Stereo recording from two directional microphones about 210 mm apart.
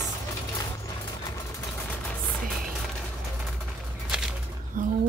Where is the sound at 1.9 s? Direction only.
Centre (ahead or behind).